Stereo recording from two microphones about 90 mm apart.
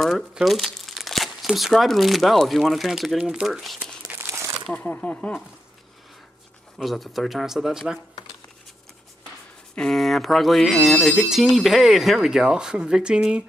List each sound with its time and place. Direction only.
0.0 s speech: 5° right (ahead or behind)
3.8 s crumpling: 15° right (ahead or behind)
4.3 s crumpling: 30° right (ahead or behind)
4.6 s speech: 15° left (ahead or behind)
6.8 s speech: centre (ahead or behind)
9.8 s speech: 5° left (ahead or behind)